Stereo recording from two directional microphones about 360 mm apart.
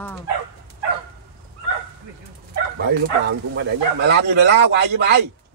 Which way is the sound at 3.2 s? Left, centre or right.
Right.